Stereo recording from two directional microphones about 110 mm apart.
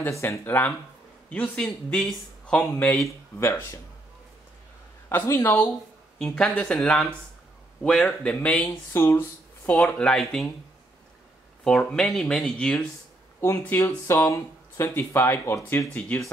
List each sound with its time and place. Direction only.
0.1 s speech: 25° left (ahead or behind)
5.1 s speech: 20° left (ahead or behind); by 10.5 s 5° left (ahead or behind)
11.6 s speech: 5° left (ahead or behind)
13.4 s speech: 25° left (ahead or behind)